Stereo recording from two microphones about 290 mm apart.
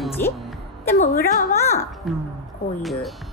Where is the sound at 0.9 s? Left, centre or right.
Left.